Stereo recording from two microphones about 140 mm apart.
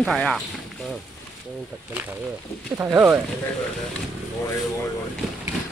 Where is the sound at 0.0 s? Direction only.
Centre (ahead or behind).